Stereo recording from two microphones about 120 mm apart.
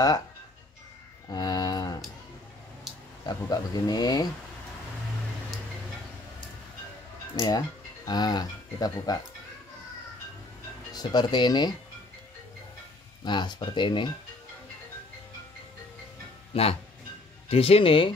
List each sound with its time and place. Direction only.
1.3 s a sound: 35° left (ahead or behind)
3.3 s speech: 35° left (ahead or behind)
7.3 s speech: 30° left (ahead or behind)
10.9 s speech: 35° left (ahead or behind)
13.2 s speech: 40° left (ahead or behind)
16.5 s speech: 55° left (ahead or behind)